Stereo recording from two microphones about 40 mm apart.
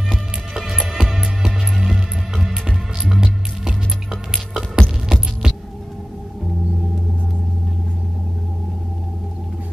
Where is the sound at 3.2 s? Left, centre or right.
Centre.